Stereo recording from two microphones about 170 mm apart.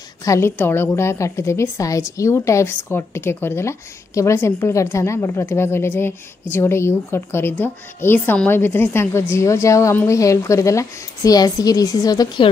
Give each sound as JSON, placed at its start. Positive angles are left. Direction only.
{"t": 0.2, "sound": "a woman's voice", "side_deg": 15}